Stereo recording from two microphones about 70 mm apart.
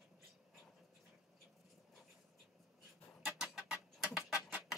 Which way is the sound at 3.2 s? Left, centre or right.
Centre.